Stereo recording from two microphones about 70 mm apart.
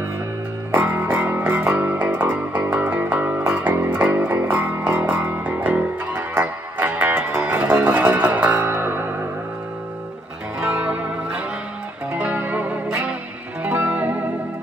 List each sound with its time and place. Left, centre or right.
0.7 s music: right
10.6 s music: centre